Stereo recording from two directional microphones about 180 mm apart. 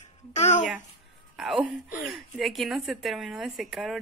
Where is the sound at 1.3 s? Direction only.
Centre (ahead or behind).